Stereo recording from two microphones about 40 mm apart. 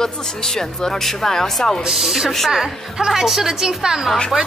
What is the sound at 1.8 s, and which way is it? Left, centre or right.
A woman's voice, centre.